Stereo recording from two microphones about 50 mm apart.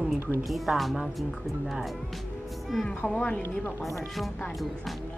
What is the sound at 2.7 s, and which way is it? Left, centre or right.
Speech, centre.